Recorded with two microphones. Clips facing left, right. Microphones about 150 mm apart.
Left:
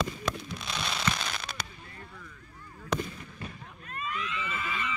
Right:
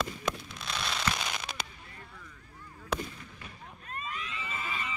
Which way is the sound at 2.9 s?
5° right (ahead or behind).